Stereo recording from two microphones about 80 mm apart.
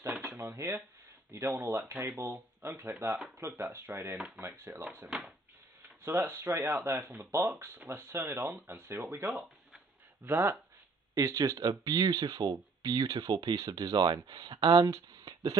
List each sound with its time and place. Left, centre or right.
0.2 s speech: right
5.0 s speech: centre
5.8 s speech: right
11.1 s speech: right